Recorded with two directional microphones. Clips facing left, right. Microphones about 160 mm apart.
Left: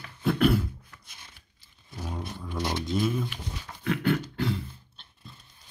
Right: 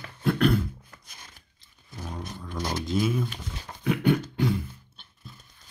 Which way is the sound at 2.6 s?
45° right (ahead or behind).